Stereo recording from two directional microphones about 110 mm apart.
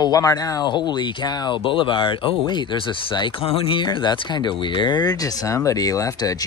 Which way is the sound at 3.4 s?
60° left (ahead or behind).